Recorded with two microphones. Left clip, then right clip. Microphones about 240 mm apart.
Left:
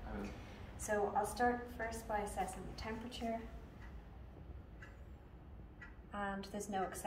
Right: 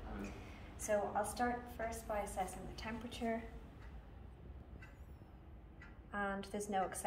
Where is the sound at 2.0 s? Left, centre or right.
Centre.